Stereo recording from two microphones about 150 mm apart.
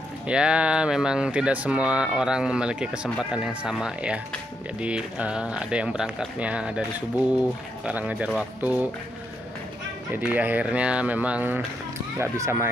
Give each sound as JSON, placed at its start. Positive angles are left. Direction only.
{"t": 0.3, "sound": "speech", "side_deg": -5}
{"t": 7.8, "sound": "speech", "side_deg": -10}
{"t": 10.1, "sound": "speech", "side_deg": -10}